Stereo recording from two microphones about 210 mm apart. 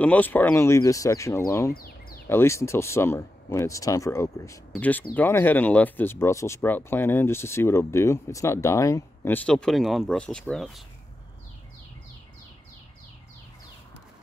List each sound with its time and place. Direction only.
0.0 s speech: 5° left (ahead or behind)
1.7 s a sound: 45° left (ahead or behind)
2.2 s speech: 10° left (ahead or behind)